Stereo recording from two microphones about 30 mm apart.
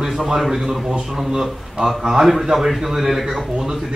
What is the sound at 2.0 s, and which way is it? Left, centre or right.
A man's voice, centre.